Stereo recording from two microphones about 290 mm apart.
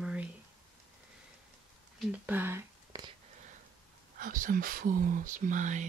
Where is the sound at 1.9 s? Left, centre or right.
Centre.